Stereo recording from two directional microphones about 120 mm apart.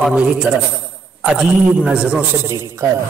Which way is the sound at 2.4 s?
25° right (ahead or behind).